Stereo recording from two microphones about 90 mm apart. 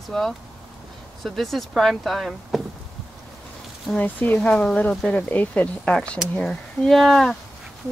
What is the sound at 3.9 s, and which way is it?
Speech, 20° left (ahead or behind).